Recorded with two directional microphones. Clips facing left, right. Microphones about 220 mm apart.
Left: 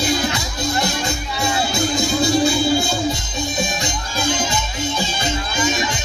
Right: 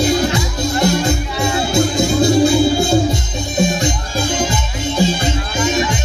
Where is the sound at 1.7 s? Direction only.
55° right (ahead or behind).